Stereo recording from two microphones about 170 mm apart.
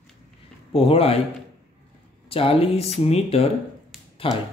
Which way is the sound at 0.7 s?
35° left (ahead or behind).